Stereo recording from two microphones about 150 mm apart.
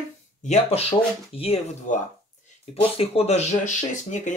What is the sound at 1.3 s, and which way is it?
Speech, centre (ahead or behind).